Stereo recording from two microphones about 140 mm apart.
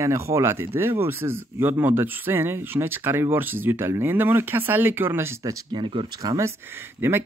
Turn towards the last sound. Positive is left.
turn(degrees=-15)  # may be behind; listen again after turning